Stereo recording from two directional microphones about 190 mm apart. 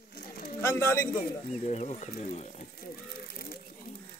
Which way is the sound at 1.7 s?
35° left (ahead or behind).